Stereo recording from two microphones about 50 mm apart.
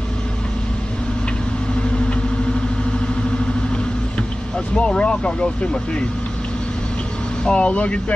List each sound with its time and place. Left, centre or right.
4.7 s speech: left
7.4 s speech: left